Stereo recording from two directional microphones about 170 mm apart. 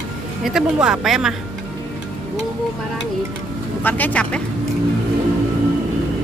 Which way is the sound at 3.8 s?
10° left (ahead or behind).